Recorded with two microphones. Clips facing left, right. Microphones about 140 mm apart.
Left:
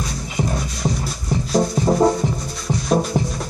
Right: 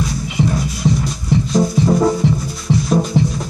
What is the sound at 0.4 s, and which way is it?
Music, 45° left (ahead or behind).